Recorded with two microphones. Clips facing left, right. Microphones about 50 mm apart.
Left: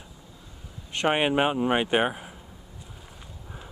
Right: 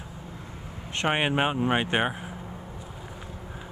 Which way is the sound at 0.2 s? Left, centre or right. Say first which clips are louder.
Right 7 dB; right.